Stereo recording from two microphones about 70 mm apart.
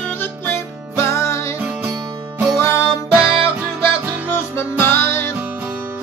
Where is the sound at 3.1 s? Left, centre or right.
Centre.